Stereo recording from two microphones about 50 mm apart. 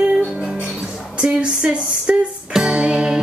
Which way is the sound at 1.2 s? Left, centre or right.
Right.